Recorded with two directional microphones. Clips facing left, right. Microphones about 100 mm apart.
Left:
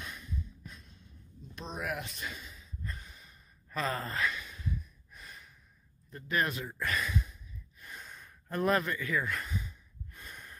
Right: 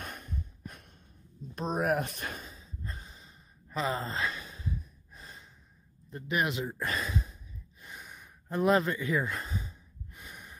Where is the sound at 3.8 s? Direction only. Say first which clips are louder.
Right 1 dB; 20° right (ahead or behind).